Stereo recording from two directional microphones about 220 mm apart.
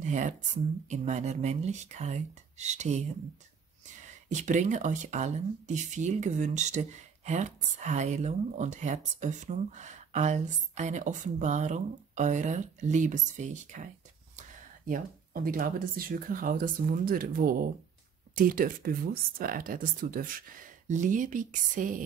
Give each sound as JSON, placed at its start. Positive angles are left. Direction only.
{"t": 0.0, "sound": "speech", "side_deg": -35}
{"t": 4.3, "sound": "speech", "side_deg": -35}
{"t": 14.9, "sound": "speech", "side_deg": -40}